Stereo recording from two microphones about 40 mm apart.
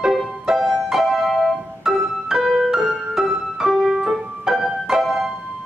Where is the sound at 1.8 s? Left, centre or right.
Centre.